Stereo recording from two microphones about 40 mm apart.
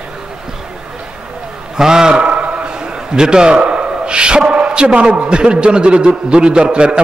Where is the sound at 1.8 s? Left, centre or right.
Centre.